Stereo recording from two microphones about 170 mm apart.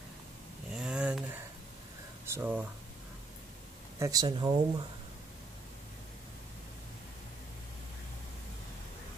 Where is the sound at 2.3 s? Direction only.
10° right (ahead or behind).